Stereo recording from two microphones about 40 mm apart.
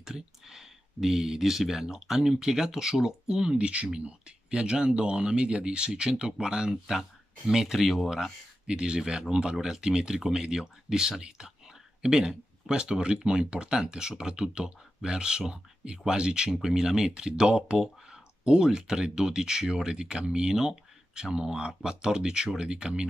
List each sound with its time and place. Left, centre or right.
0.0 s speech: centre
6.7 s speech: centre
8.1 s speech: centre